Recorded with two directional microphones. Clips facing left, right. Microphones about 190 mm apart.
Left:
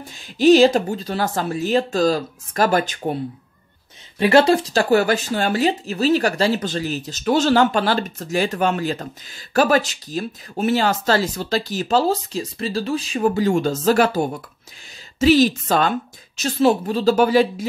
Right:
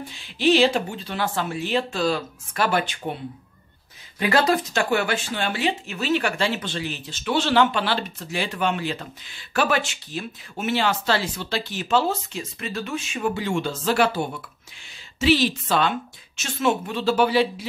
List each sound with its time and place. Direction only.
0.1 s speech: 45° left (ahead or behind)
4.2 s a woman's voice: 25° left (ahead or behind); by 17.6 s 45° left (ahead or behind)